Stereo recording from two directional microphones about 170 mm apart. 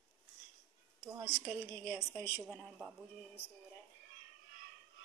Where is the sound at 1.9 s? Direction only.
5° right (ahead or behind).